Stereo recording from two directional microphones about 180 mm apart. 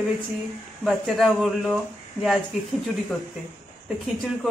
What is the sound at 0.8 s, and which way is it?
Speech, centre (ahead or behind).